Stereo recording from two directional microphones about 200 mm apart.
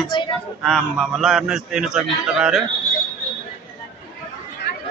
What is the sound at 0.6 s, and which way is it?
A man's voice, centre (ahead or behind).